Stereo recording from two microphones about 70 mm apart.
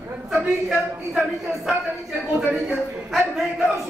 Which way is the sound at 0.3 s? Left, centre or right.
Centre.